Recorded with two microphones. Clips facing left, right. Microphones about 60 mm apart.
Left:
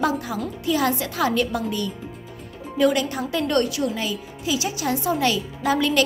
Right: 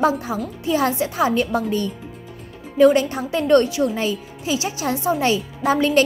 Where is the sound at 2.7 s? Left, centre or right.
Right.